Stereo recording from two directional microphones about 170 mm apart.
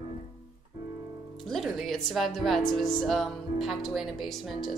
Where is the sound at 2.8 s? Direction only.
Centre (ahead or behind).